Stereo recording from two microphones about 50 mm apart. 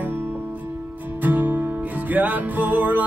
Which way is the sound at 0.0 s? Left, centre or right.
Right.